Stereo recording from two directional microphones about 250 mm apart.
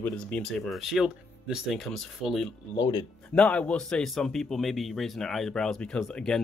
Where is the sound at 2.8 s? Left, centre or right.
Centre.